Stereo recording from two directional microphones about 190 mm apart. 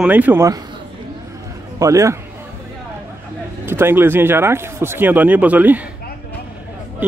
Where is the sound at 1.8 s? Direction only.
15° right (ahead or behind).